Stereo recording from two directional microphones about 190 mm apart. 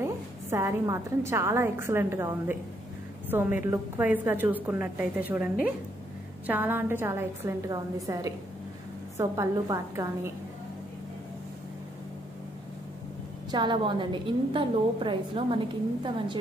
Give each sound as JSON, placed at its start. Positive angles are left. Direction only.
{"t": 0.0, "sound": "a woman's voice", "side_deg": -15}
{"t": 13.5, "sound": "a woman's voice", "side_deg": -25}